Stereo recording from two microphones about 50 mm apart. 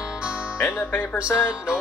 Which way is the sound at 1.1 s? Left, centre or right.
Centre.